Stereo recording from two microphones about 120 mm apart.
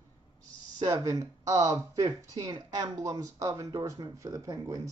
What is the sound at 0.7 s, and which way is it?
Speech, 30° right (ahead or behind).